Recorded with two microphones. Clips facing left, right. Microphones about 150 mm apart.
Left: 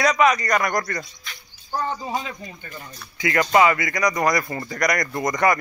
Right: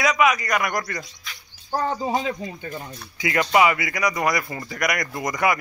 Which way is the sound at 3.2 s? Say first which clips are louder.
Left 1 dB; 15° right (ahead or behind).